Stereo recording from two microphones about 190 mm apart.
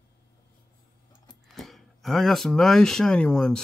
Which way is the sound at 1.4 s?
Centre (ahead or behind).